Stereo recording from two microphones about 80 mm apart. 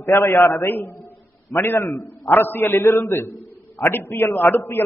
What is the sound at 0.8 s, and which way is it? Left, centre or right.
A man's voice, left.